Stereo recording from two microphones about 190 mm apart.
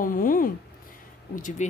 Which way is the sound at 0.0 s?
45° left (ahead or behind).